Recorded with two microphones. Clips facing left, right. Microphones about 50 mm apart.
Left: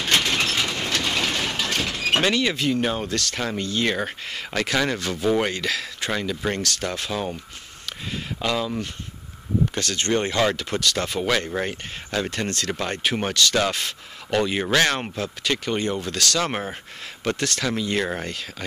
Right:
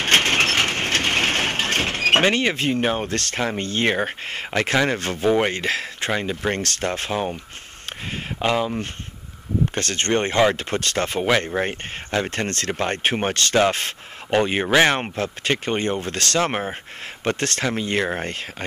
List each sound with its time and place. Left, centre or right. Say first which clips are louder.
0.0 s crushing: right 4 dB; right
2.3 s speech: right 1 dB; right
6.1 s speech: right 1 dB; right
6.5 s speech: right 2 dB; right
8.4 s speech: right 4 dB; right
9.8 s speech: right 4 dB; right